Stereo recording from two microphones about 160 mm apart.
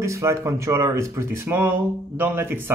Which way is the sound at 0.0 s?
20° right (ahead or behind).